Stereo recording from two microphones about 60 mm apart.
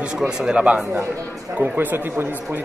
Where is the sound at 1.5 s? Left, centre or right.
Right.